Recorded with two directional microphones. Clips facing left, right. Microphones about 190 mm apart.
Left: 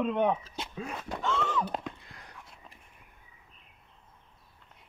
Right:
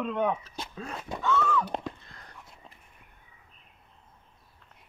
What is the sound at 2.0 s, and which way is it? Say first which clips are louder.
Whispering: even; 15° left (ahead or behind).